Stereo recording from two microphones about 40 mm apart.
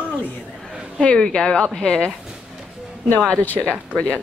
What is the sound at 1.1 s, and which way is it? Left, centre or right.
Speech, centre.